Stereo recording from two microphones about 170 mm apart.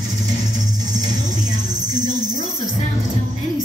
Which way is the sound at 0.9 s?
25° right (ahead or behind).